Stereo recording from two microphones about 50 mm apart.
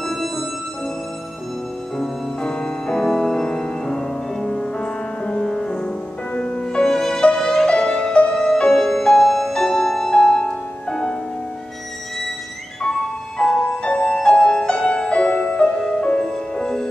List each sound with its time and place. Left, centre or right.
0.0 s music: centre
2.0 s music: centre
13.4 s music: centre